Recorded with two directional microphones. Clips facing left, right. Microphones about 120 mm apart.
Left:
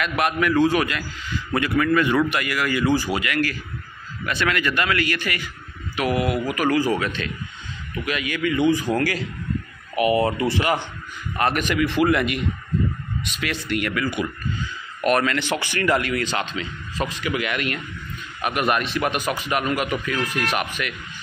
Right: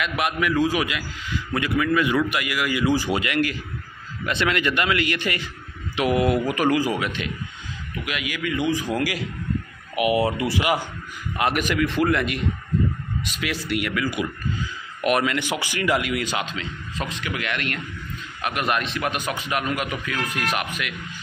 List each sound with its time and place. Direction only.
0.0 s a man's voice: centre (ahead or behind)
3.1 s a man's voice: 25° right (ahead or behind)
16.5 s a man's voice: 5° left (ahead or behind)